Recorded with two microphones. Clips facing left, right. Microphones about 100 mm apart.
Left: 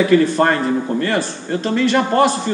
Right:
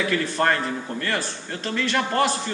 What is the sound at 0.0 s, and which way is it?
A man's voice, 20° left (ahead or behind).